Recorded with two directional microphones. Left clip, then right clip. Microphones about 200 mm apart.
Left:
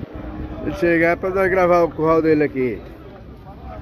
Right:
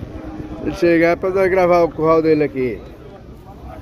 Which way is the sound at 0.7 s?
15° right (ahead or behind).